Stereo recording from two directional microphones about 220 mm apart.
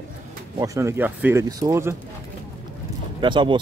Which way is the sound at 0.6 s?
15° right (ahead or behind).